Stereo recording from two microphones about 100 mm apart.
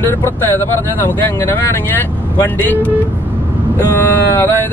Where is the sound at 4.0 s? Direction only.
20° left (ahead or behind).